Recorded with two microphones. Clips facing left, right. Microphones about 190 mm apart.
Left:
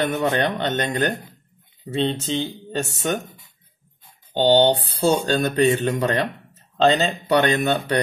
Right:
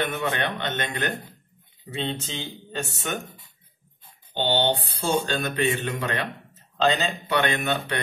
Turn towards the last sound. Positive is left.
turn(degrees=40)  # may be behind; listen again after turning